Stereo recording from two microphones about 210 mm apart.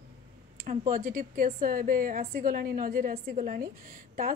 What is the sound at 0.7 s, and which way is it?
A woman's voice, 40° right (ahead or behind).